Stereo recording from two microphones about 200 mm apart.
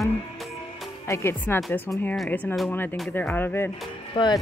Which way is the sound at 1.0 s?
15° left (ahead or behind).